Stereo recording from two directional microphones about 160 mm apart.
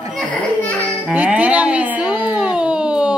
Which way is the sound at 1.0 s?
10° right (ahead or behind).